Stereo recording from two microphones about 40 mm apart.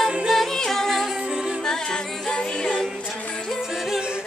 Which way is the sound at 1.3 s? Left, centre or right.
Centre.